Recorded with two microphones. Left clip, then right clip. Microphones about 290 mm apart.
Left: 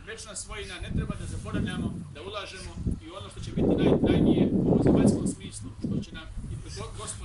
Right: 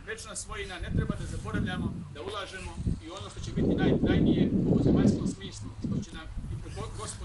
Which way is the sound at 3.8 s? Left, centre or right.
Left.